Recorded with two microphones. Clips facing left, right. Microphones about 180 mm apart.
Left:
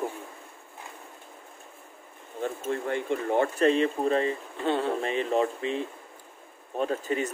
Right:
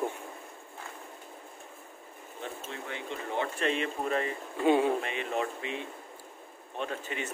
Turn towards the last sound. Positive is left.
turn(degrees=40)  # may be behind; listen again after turning